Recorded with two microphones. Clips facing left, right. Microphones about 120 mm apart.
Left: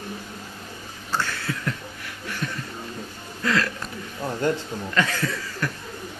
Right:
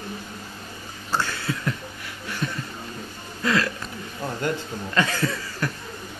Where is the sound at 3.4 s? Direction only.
10° right (ahead or behind).